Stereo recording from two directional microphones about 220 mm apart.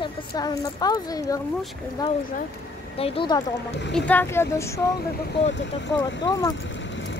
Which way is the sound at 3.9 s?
5° left (ahead or behind).